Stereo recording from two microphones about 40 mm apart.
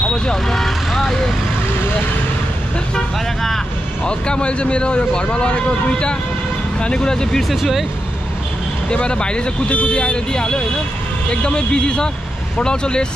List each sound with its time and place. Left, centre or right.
0.1 s speech: centre
0.6 s speech: centre
4.0 s speech: left
7.4 s speech: centre
8.9 s speech: left